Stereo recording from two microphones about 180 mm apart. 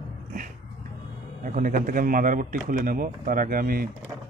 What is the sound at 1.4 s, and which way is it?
Speech, 45° right (ahead or behind).